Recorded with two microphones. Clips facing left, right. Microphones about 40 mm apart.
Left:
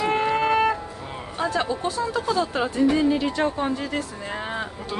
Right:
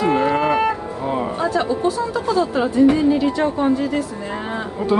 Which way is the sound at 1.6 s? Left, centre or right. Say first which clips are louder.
Right 5 dB; left.